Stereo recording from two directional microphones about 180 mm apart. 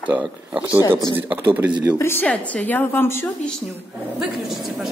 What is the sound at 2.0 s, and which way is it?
A woman's voice, 10° left (ahead or behind).